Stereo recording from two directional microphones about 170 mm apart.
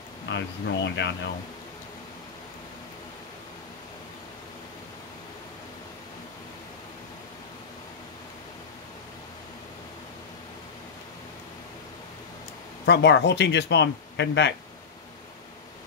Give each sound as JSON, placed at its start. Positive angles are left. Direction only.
{"t": 0.3, "sound": "speech", "side_deg": 90}
{"t": 12.8, "sound": "speech", "side_deg": 90}